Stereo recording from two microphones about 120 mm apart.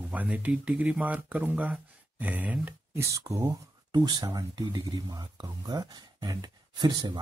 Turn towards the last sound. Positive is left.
turn(degrees=-35)  # may be behind; listen again after turning